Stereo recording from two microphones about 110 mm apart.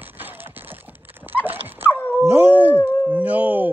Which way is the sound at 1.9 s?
15° left (ahead or behind).